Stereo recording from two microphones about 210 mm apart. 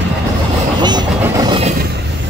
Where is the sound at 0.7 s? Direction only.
20° right (ahead or behind).